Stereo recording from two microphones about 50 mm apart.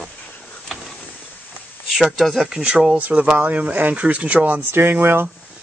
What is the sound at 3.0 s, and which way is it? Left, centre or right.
Speech, right.